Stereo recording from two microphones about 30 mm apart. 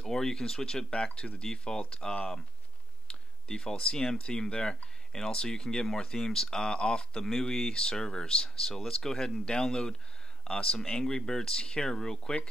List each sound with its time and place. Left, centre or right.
0.0 s speech: left
3.1 s a sound: left
4.3 s speech: left
6.1 s speech: centre
7.2 s speech: centre
7.7 s speech: left